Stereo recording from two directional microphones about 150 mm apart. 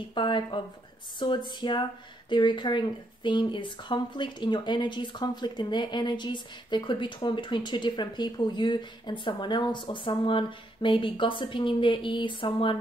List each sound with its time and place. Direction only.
0.1 s speech: 30° left (ahead or behind)